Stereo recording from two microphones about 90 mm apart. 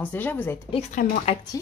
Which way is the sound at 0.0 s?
20° left (ahead or behind).